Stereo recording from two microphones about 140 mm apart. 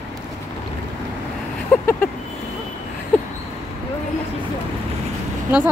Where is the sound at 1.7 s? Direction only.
10° left (ahead or behind).